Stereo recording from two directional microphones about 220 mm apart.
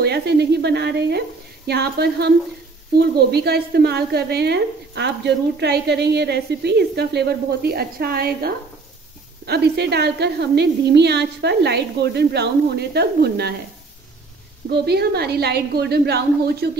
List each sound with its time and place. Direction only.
0.0 s a woman's voice: 50° right (ahead or behind)
14.7 s a woman's voice: 45° right (ahead or behind)